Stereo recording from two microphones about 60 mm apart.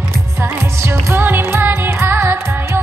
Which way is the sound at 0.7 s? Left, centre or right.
Right.